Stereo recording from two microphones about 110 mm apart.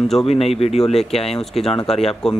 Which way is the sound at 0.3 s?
65° left (ahead or behind).